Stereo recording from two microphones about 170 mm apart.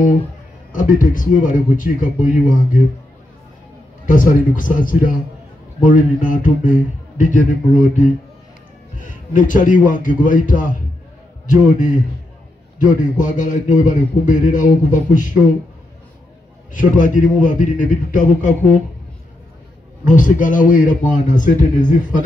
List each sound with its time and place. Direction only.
0.7 s a man's voice: 50° left (ahead or behind)
4.0 s a man's voice: 50° left (ahead or behind)
12.7 s a man's voice: 50° left (ahead or behind)
16.7 s a man's voice: 50° left (ahead or behind)
20.1 s a man's voice: 50° left (ahead or behind)